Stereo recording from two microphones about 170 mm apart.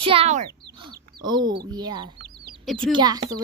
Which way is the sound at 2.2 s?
75° right (ahead or behind).